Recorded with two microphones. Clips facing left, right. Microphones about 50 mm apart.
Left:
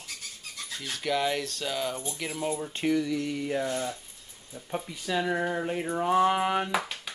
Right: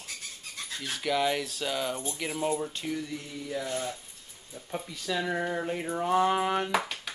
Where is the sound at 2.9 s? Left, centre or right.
Left.